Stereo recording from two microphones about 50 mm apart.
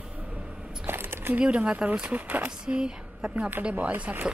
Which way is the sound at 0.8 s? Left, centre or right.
Right.